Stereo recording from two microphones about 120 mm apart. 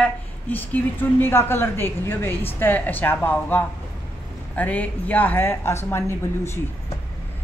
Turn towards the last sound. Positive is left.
turn(degrees=20)  # may be behind; listen again after turning